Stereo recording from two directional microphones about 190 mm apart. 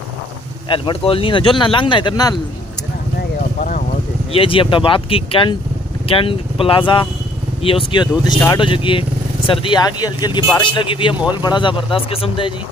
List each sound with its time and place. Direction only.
0.7 s speech: 25° left (ahead or behind)
3.2 s clip-clop: 45° left (ahead or behind)
4.3 s speech: 30° left (ahead or behind)